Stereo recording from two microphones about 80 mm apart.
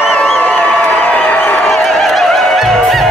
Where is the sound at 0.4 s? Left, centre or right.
Centre.